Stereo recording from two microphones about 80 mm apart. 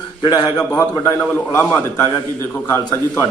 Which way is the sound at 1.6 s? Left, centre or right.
Left.